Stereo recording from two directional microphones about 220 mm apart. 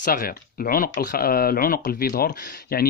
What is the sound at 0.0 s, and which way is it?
Speech, 40° left (ahead or behind).